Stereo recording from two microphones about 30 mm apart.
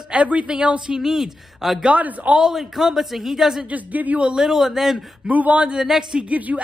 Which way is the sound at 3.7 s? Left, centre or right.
Right.